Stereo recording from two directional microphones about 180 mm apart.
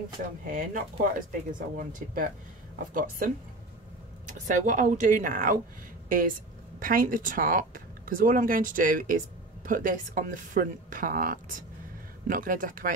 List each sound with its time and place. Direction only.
0.5 s speech: 50° right (ahead or behind)
4.3 s speech: 45° right (ahead or behind)